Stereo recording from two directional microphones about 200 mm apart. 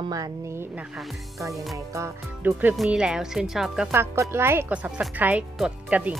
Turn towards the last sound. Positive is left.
turn(degrees=-5)  # may be behind; listen again after turning